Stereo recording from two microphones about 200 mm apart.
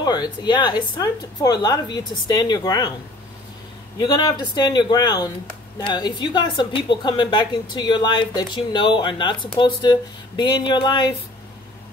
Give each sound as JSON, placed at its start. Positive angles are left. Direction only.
{"t": 0.0, "sound": "a woman's voice", "side_deg": 20}
{"t": 4.0, "sound": "a woman's voice", "side_deg": 20}